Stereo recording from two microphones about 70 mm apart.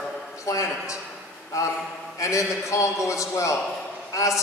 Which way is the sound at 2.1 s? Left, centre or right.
Left.